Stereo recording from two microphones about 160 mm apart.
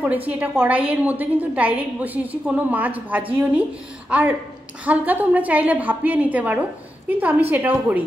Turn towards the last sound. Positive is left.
turn(degrees=-10)  # may be behind; listen again after turning